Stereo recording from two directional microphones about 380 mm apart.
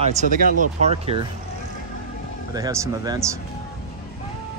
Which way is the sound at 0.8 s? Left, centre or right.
Centre.